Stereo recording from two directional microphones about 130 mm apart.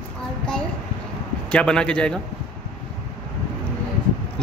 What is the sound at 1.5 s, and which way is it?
Speech, 10° left (ahead or behind).